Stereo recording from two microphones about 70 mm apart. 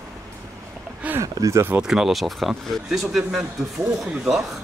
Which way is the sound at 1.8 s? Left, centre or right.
Centre.